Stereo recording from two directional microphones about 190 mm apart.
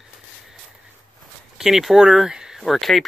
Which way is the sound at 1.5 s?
Centre (ahead or behind).